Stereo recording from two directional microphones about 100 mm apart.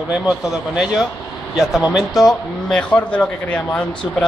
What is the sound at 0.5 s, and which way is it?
A man's voice, 5° right (ahead or behind).